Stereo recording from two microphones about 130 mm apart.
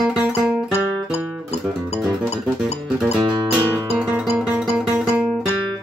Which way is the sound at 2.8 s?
10° right (ahead or behind).